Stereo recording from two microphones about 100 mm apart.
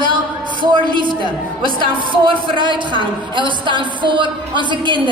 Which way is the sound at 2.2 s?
55° right (ahead or behind).